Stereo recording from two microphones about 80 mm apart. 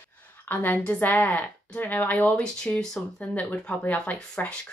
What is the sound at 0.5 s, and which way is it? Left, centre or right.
A woman's voice, left.